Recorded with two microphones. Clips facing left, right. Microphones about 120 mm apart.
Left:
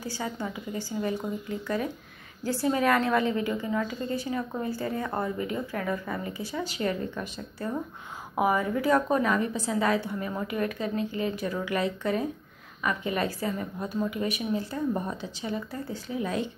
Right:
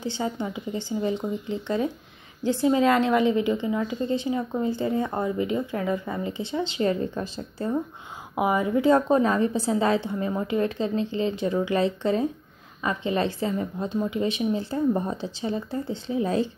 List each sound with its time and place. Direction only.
0.0 s a woman's voice: 25° right (ahead or behind)
8.4 s a woman's voice: 20° right (ahead or behind)